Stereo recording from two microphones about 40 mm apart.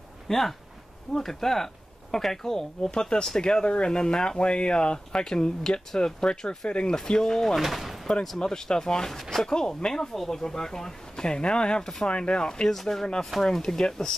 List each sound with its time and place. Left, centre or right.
0.3 s speech: centre
7.5 s speech: centre
8.1 s speech: centre; by 12.6 s left
12.6 s speech: centre